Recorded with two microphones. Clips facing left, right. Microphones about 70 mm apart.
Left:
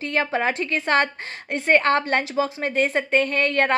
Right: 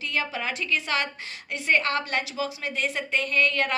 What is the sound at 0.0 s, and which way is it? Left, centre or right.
A woman's voice, left.